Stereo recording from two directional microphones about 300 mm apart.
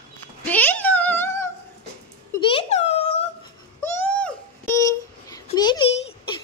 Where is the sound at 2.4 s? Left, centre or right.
Centre.